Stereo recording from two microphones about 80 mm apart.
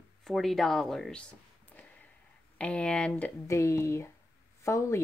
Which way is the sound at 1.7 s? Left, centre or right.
Centre.